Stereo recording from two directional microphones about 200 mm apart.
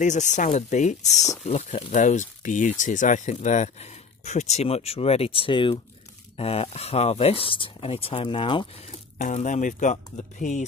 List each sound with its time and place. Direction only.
0.0 s speech: 35° left (ahead or behind)
9.2 s speech: 40° left (ahead or behind)